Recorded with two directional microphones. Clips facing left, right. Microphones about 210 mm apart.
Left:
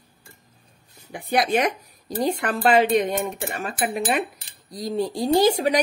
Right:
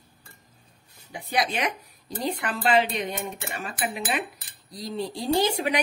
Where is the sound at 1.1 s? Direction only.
55° left (ahead or behind).